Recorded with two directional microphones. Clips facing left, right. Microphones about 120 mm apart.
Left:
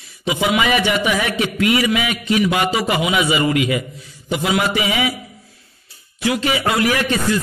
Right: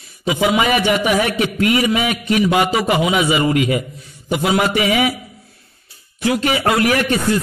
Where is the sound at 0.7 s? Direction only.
50° right (ahead or behind).